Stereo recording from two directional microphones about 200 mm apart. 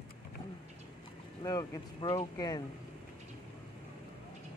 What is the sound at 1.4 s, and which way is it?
Speech, 20° left (ahead or behind).